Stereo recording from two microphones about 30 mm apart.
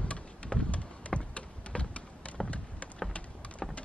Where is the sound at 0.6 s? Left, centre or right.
Left.